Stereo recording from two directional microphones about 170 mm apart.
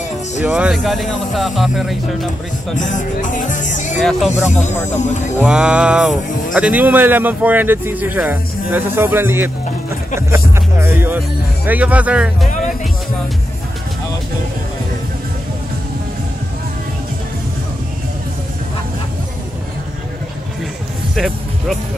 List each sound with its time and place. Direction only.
0.4 s speech: 5° right (ahead or behind)
2.8 s speech: 45° left (ahead or behind)
4.0 s speech: centre (ahead or behind)
21.1 s music: centre (ahead or behind)